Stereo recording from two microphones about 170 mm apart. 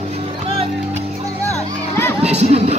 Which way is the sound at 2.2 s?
40° right (ahead or behind).